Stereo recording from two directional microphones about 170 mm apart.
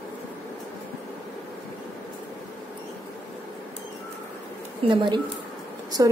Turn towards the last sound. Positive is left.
turn(degrees=-20)  # may be behind; listen again after turning